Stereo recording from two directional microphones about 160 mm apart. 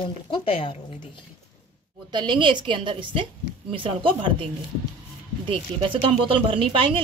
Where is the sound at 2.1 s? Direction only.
30° right (ahead or behind).